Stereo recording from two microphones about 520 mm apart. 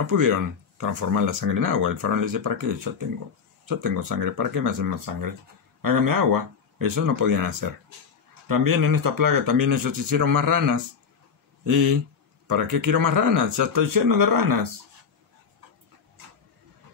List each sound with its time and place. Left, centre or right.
0.1 s speech: right